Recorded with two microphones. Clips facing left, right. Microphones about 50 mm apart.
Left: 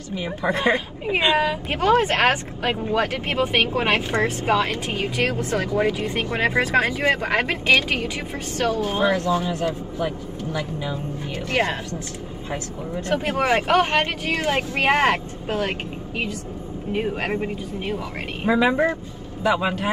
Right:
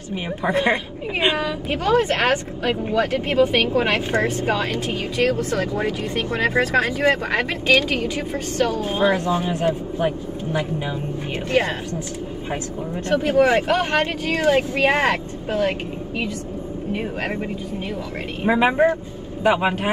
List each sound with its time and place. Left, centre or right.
0.1 s a woman's voice: right
1.4 s speech: left
8.8 s speech: right
13.1 s speech: left
16.9 s speech: left
18.5 s speech: right